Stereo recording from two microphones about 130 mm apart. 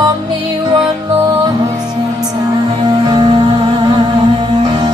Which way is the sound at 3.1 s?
35° right (ahead or behind).